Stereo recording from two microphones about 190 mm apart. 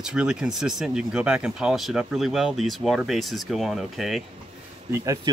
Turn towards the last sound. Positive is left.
turn(degrees=-15)  # may be behind; listen again after turning